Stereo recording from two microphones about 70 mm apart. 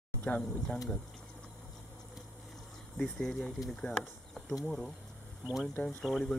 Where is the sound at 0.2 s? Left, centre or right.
Left.